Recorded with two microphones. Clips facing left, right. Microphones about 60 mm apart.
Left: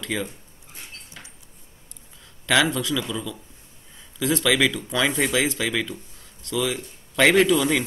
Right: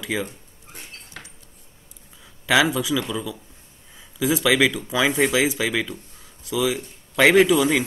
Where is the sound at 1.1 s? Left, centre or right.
Right.